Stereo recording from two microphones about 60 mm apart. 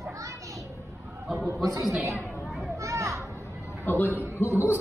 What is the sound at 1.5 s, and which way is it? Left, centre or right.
Speech, right.